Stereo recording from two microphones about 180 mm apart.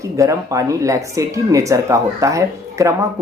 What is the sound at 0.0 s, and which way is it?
Speech, 15° right (ahead or behind).